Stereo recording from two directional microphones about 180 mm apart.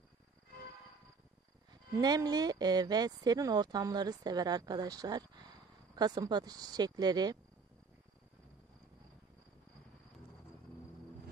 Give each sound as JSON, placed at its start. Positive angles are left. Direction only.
{"t": 2.0, "sound": "speech", "side_deg": -20}